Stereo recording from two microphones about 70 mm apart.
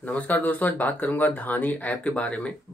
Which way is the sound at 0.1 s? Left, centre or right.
Left.